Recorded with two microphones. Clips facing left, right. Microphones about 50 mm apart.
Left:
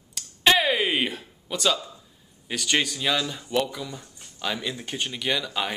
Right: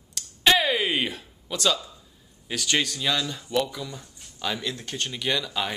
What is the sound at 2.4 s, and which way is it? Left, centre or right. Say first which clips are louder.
Speech: left 1 dB; centre.